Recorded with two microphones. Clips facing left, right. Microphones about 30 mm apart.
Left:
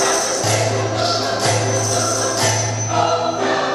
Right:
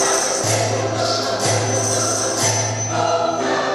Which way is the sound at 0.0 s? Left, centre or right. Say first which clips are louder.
Left 1 dB; centre.